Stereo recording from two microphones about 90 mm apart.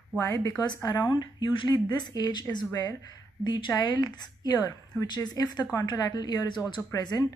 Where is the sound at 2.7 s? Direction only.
40° left (ahead or behind).